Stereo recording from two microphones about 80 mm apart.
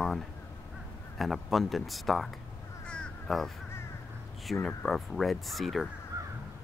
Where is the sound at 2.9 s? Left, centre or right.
Centre.